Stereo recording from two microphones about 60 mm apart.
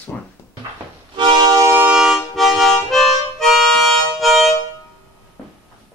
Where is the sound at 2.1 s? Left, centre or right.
Centre.